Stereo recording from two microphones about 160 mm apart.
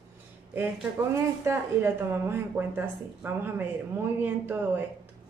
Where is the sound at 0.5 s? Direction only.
15° right (ahead or behind).